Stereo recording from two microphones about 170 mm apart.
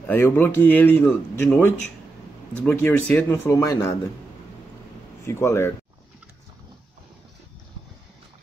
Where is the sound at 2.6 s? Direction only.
10° left (ahead or behind).